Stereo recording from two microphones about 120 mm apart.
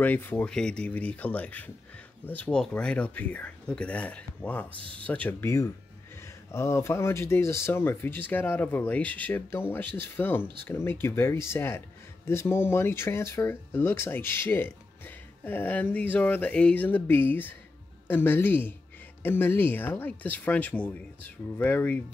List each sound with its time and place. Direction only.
0.0 s speech: 15° left (ahead or behind)